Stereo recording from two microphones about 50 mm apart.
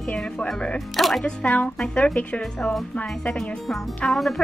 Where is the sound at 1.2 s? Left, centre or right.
Left.